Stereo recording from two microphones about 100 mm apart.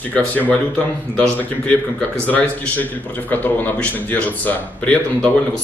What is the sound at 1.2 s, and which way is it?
Speech, 15° left (ahead or behind).